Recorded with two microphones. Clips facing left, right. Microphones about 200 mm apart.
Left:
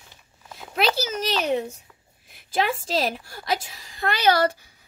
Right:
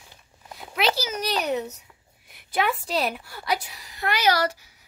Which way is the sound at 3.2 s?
45° left (ahead or behind).